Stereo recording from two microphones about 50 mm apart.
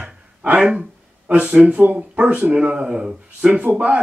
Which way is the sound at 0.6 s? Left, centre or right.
Centre.